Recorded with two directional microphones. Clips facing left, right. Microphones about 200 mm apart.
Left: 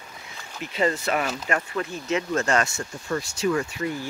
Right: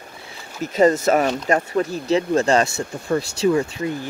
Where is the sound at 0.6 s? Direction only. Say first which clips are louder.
Right 9 dB; 45° right (ahead or behind).